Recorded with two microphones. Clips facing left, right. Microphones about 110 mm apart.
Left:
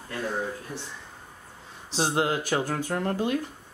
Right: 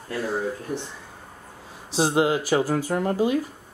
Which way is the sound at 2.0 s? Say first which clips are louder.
Right 5 dB; 5° right (ahead or behind).